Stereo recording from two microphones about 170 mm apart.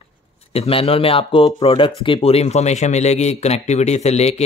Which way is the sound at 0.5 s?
35° left (ahead or behind).